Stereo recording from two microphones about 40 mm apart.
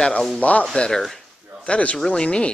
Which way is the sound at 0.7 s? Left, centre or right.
Centre.